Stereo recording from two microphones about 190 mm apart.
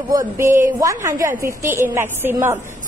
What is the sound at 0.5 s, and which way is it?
Speech, 45° right (ahead or behind).